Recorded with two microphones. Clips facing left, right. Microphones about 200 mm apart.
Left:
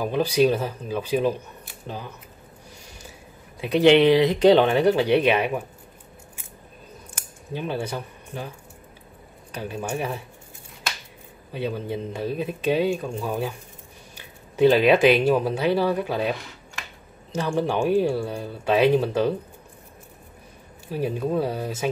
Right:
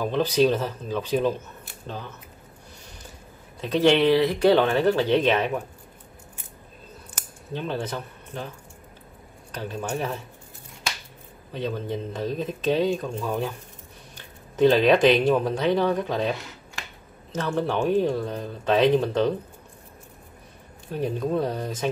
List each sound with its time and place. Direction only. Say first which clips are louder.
0.0 s speech: left 1 dB; 10° left (ahead or behind)
3.6 s speech: left 3 dB; 15° left (ahead or behind)
7.5 s speech: left 1 dB; 10° left (ahead or behind)
11.5 s speech: left 1 dB; 10° left (ahead or behind)
20.9 s speech: left 1 dB; 5° left (ahead or behind)